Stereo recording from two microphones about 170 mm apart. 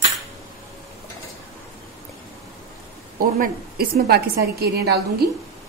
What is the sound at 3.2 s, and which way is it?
A woman's voice, 60° right (ahead or behind).